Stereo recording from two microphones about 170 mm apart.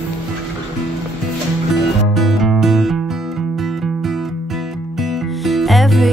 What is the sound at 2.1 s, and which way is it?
Music, centre (ahead or behind).